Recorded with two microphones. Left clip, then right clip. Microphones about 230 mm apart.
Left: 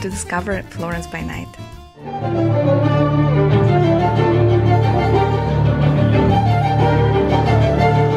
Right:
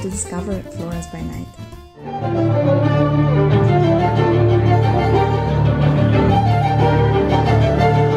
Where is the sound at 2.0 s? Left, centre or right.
Centre.